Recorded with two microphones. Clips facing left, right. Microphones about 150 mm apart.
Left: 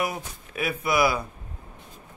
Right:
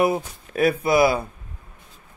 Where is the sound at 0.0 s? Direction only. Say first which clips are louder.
Right 9 dB; 25° right (ahead or behind).